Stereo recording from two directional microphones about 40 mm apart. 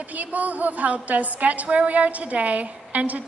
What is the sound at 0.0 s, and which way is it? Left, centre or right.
A woman's voice, right.